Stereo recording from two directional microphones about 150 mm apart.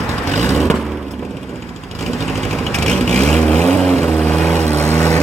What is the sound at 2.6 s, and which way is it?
Vehicle, 5° left (ahead or behind).